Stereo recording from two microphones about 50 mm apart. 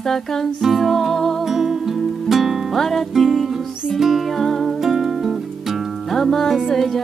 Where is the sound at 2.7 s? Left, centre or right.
Centre.